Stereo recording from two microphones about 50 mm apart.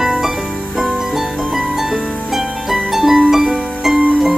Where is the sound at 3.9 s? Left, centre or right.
Right.